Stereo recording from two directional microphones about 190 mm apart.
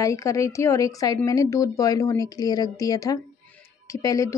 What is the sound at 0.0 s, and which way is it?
A woman's voice, 15° left (ahead or behind).